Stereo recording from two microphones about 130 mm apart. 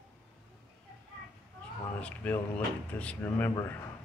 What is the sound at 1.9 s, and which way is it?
Speech, 10° left (ahead or behind).